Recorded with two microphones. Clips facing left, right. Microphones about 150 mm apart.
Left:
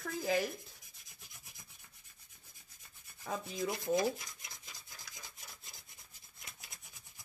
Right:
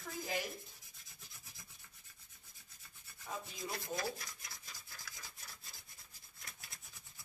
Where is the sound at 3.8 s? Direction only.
20° left (ahead or behind).